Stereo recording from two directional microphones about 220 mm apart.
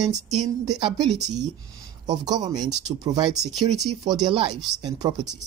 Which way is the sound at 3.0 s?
20° right (ahead or behind).